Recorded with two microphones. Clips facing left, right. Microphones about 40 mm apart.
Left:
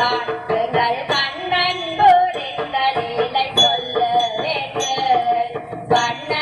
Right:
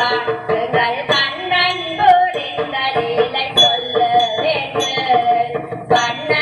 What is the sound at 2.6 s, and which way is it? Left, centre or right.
Music, centre.